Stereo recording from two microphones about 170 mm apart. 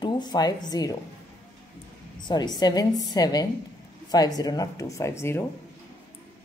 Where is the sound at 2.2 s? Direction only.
25° left (ahead or behind).